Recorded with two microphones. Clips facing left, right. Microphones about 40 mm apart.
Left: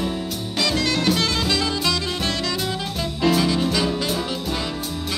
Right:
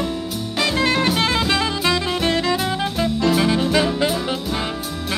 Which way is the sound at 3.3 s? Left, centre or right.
Right.